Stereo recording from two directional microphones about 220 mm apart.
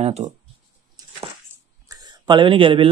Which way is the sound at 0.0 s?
30° right (ahead or behind).